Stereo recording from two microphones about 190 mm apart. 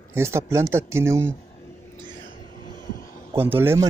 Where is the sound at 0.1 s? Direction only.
15° right (ahead or behind).